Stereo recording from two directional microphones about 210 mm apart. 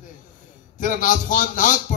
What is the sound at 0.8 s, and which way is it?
A man's voice, 40° left (ahead or behind).